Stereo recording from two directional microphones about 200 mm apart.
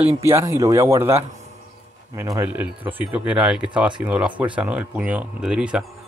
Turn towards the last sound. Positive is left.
turn(degrees=-5)  # may be behind; listen again after turning